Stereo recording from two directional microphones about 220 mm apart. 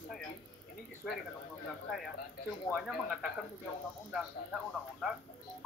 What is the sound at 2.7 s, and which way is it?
Speech, centre (ahead or behind).